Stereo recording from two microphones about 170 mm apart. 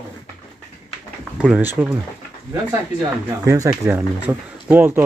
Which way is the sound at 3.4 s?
20° right (ahead or behind).